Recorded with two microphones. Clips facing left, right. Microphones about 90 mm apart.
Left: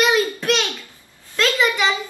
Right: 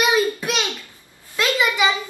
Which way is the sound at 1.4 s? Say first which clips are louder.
Left 1 dB; 10° right (ahead or behind).